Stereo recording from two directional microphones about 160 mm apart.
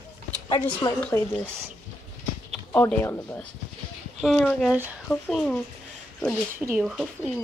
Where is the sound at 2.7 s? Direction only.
15° left (ahead or behind).